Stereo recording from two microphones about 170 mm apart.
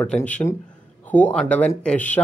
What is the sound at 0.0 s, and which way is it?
Speech, 5° left (ahead or behind).